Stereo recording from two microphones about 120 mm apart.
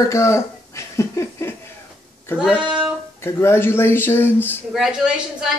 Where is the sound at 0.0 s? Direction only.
25° left (ahead or behind).